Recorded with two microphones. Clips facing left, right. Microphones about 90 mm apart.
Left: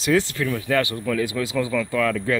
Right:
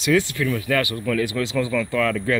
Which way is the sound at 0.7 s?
20° left (ahead or behind).